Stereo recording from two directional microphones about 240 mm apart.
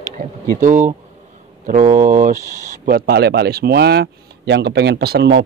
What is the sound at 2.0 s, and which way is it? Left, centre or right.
Speech, right.